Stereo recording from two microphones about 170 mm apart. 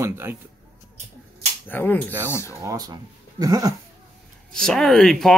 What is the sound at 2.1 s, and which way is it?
A man's voice, 15° right (ahead or behind).